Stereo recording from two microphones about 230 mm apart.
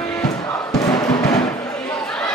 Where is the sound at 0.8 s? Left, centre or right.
Centre.